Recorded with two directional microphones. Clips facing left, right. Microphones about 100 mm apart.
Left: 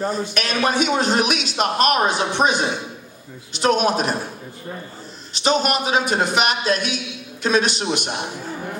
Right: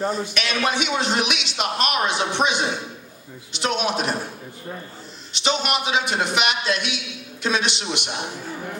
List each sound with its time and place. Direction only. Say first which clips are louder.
0.1 s a man's voice: left 2 dB; 45° left (ahead or behind)
5.3 s a man's voice: left 4 dB; 45° left (ahead or behind)